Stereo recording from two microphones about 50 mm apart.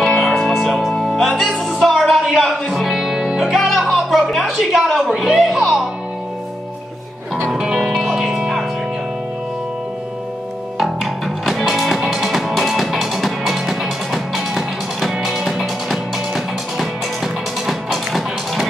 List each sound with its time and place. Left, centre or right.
0.0 s music: centre
1.8 s a sound: centre
2.3 s music: centre
4.4 s a sound: centre
4.8 s music: centre
7.7 s music: centre
10.8 s music: centre